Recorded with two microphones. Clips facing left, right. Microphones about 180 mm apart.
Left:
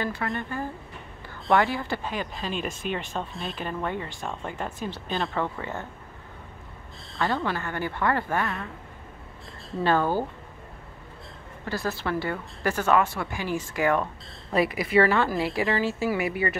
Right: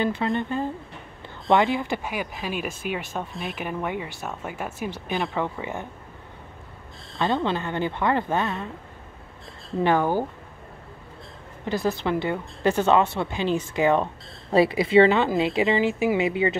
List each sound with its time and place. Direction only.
0.0 s speech: 20° right (ahead or behind)
7.2 s speech: 20° right (ahead or behind)
9.8 s speech: 15° right (ahead or behind)
11.6 s speech: 20° right (ahead or behind)